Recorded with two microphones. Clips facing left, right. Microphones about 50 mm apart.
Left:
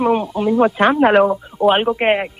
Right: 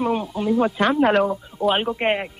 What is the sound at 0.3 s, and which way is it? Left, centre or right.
Speech, centre.